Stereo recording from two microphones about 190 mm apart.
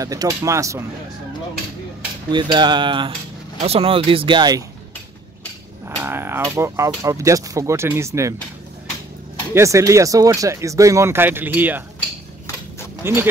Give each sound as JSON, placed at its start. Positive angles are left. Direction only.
{"t": 0.0, "sound": "speech", "side_deg": -20}
{"t": 2.3, "sound": "speech", "side_deg": -25}
{"t": 5.9, "sound": "speech", "side_deg": -10}
{"t": 9.5, "sound": "speech", "side_deg": -15}
{"t": 13.0, "sound": "speech", "side_deg": -10}